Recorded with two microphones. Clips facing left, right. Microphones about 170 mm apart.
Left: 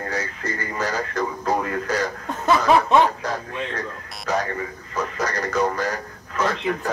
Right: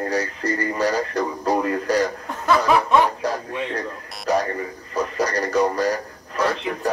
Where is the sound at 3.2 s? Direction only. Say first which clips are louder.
Right 3 dB; 35° right (ahead or behind).